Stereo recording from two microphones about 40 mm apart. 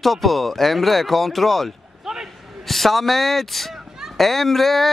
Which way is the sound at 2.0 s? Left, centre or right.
Centre.